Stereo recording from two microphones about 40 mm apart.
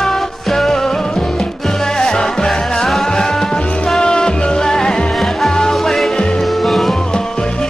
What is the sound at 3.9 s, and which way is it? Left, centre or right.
Music, centre.